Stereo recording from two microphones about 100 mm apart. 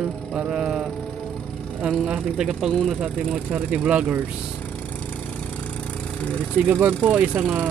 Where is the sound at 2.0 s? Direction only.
10° right (ahead or behind).